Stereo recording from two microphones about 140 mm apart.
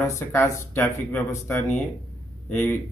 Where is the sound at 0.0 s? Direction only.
20° left (ahead or behind).